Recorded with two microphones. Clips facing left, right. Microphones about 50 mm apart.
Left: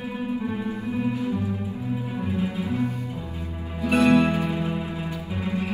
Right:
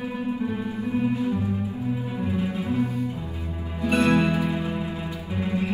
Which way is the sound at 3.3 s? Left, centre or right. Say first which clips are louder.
Even; right.